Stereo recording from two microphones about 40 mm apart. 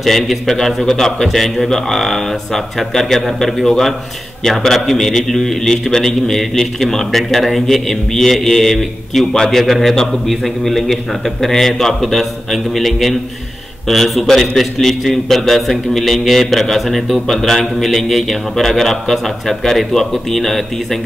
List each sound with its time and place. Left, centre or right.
0.0 s a man's voice: centre